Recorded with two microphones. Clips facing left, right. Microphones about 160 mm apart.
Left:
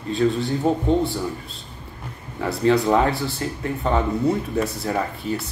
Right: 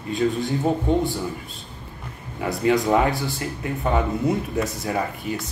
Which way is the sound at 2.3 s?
15° right (ahead or behind).